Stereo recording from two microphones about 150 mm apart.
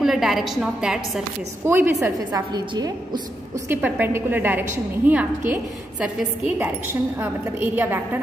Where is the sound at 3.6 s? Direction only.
10° right (ahead or behind).